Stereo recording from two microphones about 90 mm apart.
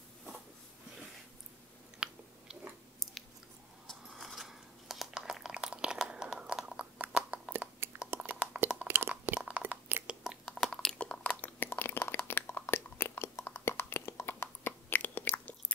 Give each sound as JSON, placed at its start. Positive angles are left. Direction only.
{"t": 2.0, "sound": "chewing", "side_deg": -10}
{"t": 3.8, "sound": "chewing", "side_deg": 5}
{"t": 8.3, "sound": "a sound", "side_deg": -25}
{"t": 9.5, "sound": "chewing", "side_deg": -20}
{"t": 10.2, "sound": "chewing", "side_deg": 0}